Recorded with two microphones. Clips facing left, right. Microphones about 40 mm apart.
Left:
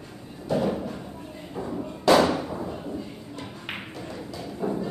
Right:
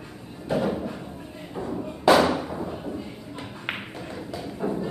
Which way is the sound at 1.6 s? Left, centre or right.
Centre.